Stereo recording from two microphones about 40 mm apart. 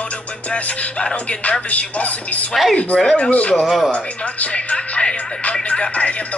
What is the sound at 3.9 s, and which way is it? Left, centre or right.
Speech, left.